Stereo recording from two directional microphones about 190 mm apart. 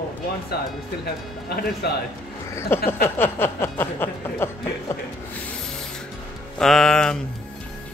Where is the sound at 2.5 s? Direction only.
10° left (ahead or behind).